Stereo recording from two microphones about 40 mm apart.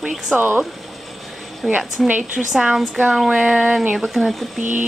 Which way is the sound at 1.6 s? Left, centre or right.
Centre.